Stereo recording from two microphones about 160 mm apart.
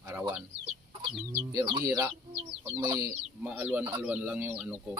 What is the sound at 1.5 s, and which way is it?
Speech, 20° right (ahead or behind).